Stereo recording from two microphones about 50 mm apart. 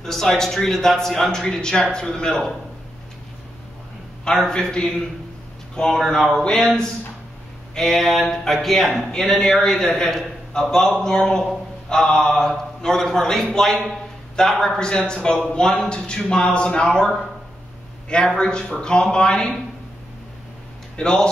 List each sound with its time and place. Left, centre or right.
0.0 s speech: centre
4.2 s a man's voice: centre
18.1 s speech: centre
20.9 s speech: centre